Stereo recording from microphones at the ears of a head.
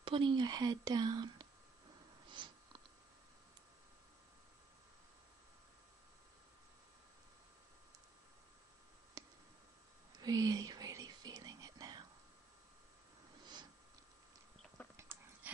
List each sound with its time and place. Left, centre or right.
0.0 s speech: right
2.2 s a sound: right
10.1 s whispering: right